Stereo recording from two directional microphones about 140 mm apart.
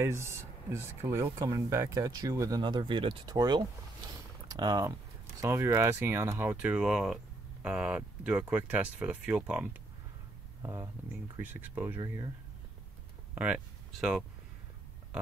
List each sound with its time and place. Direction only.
0.0 s speech: 20° right (ahead or behind)
10.6 s speech: 20° right (ahead or behind)
13.3 s speech: 10° right (ahead or behind)